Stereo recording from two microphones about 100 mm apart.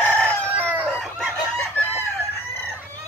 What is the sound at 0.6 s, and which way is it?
Chicken, 20° right (ahead or behind).